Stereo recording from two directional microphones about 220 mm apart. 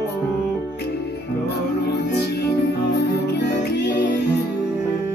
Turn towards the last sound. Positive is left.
turn(degrees=50)  # may be behind; listen again after turning